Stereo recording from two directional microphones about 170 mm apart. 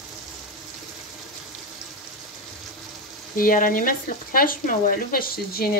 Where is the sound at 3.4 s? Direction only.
55° left (ahead or behind).